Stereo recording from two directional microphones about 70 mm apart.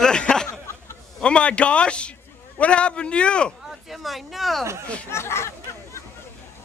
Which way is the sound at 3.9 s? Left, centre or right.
Centre.